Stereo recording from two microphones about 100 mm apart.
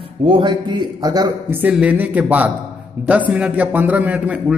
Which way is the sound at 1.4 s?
20° right (ahead or behind).